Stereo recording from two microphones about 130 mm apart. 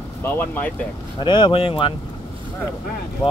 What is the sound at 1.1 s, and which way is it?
Speech, 35° left (ahead or behind).